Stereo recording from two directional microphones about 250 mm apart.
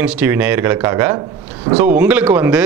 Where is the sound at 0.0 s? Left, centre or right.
Centre.